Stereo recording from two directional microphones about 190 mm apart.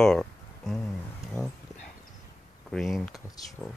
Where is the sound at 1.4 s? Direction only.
15° left (ahead or behind).